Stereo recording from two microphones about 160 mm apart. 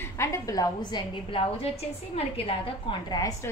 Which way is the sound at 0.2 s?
20° left (ahead or behind).